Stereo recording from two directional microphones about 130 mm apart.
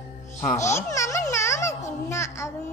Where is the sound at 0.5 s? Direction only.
25° left (ahead or behind).